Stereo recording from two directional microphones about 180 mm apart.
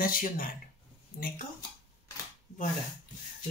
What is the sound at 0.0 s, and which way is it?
Speech, 50° left (ahead or behind).